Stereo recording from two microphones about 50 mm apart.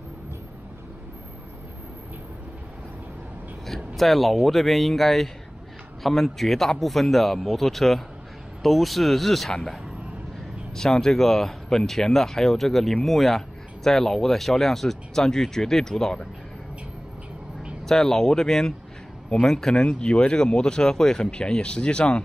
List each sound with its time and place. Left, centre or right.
3.6 s speech: centre
17.8 s speech: centre